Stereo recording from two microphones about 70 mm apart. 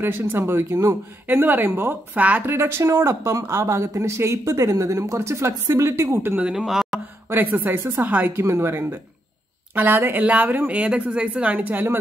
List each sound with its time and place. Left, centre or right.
0.0 s speech: right
1.2 s speech: right
2.5 s speech: right
6.5 s speech: centre
7.2 s speech: right